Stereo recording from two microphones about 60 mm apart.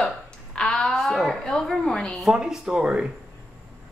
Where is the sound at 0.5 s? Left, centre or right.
Centre.